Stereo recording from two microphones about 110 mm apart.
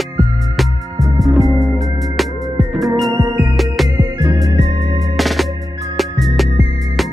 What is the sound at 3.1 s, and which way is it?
Music, 30° right (ahead or behind).